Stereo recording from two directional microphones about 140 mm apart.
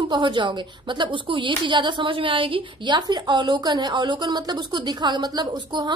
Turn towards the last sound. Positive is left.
turn(degrees=-30)  # may be behind; listen again after turning